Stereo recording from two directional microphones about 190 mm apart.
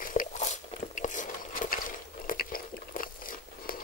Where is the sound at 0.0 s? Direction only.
45° left (ahead or behind).